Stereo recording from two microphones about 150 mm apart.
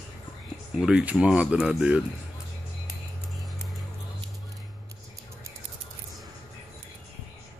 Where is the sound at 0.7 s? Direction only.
5° right (ahead or behind).